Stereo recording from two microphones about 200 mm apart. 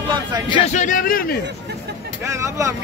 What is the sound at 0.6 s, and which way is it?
Speech, 40° left (ahead or behind).